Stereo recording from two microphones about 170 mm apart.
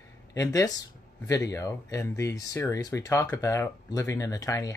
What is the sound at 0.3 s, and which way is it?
Speech, 20° left (ahead or behind).